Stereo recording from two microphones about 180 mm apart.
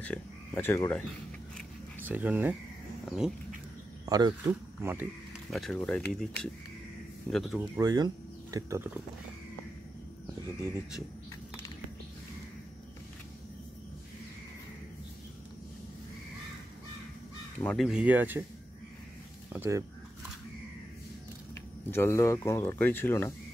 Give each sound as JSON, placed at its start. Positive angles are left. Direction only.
{"t": 0.0, "sound": "speech", "side_deg": 10}
{"t": 2.0, "sound": "speech", "side_deg": -10}
{"t": 4.0, "sound": "speech", "side_deg": -20}
{"t": 5.5, "sound": "speech", "side_deg": 0}
{"t": 7.7, "sound": "speech", "side_deg": -20}
{"t": 17.6, "sound": "speech", "side_deg": 5}
{"t": 17.8, "sound": "speech", "side_deg": -5}
{"t": 19.5, "sound": "speech", "side_deg": -15}
{"t": 21.9, "sound": "speech", "side_deg": 15}